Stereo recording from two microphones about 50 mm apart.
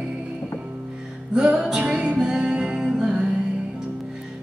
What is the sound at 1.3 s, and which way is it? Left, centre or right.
Music, centre.